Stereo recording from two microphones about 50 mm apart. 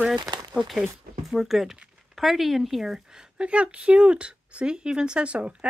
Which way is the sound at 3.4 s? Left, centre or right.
Right.